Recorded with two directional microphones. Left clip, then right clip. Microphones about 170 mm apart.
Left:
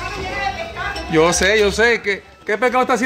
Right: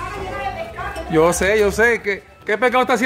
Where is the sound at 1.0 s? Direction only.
10° right (ahead or behind).